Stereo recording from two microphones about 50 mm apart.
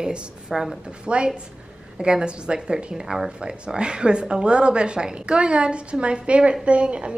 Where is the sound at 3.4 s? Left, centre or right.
Centre.